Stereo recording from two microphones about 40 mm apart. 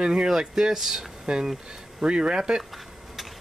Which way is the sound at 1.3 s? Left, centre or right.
Right.